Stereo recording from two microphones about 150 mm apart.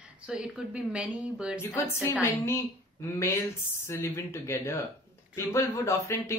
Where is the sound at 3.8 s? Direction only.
20° left (ahead or behind).